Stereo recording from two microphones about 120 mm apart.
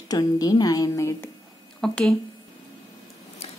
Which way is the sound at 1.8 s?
5° left (ahead or behind).